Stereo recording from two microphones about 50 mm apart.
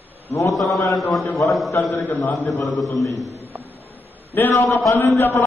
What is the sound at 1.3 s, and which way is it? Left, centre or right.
Speech, left.